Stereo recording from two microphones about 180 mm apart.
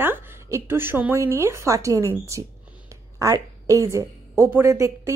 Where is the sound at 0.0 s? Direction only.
10° right (ahead or behind).